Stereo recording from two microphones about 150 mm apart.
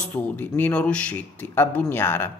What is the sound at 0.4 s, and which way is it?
Speech, 10° left (ahead or behind).